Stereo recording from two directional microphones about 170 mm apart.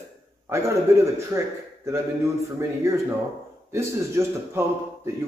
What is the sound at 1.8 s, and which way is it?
Speech, 15° right (ahead or behind).